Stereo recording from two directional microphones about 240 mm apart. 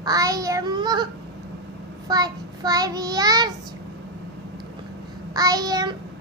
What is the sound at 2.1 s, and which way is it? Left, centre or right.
Child singing, centre.